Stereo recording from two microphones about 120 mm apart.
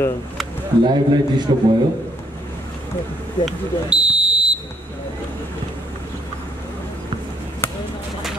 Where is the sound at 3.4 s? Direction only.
5° right (ahead or behind).